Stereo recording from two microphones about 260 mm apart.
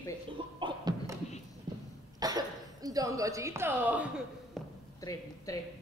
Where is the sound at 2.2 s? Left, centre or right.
Centre.